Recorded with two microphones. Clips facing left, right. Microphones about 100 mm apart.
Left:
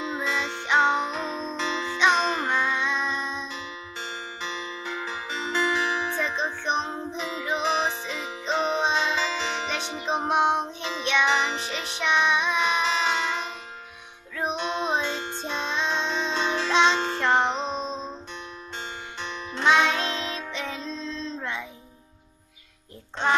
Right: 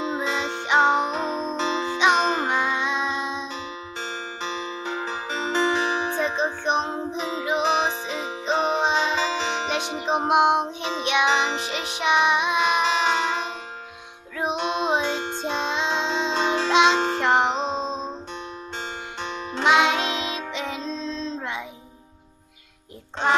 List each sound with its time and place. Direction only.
0.0 s music: 25° right (ahead or behind)
2.0 s music: 20° right (ahead or behind)
4.0 s music: 30° right (ahead or behind)
19.2 s music: 40° right (ahead or behind)
19.6 s music: 15° right (ahead or behind)